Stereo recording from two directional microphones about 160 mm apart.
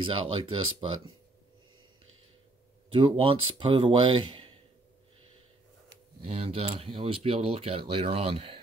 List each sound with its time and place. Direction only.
0.0 s speech: 35° right (ahead or behind)
2.9 s speech: 35° right (ahead or behind)
6.2 s speech: 40° right (ahead or behind)